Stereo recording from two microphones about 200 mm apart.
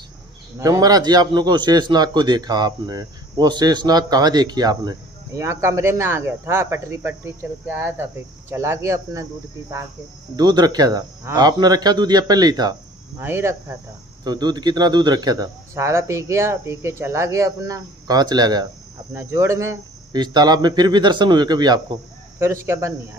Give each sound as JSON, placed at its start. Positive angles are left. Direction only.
{"t": 0.6, "sound": "a man's voice", "side_deg": -20}